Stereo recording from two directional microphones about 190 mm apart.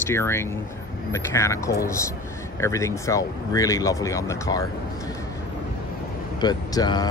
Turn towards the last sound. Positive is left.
turn(degrees=20)  # may be behind; listen again after turning